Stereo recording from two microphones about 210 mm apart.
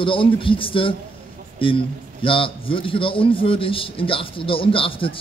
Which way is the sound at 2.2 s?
25° left (ahead or behind).